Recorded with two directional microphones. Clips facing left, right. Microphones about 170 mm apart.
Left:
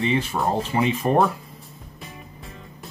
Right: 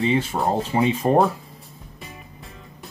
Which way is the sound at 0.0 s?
25° right (ahead or behind).